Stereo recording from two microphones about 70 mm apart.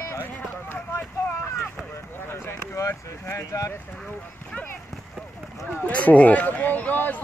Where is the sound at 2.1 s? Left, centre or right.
Left.